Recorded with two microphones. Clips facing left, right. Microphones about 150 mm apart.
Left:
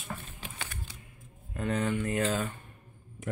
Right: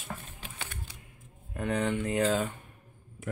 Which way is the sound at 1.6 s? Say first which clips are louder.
Right 1 dB; 15° right (ahead or behind).